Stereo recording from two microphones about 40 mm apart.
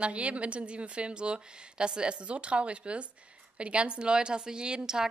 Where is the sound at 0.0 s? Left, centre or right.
Right.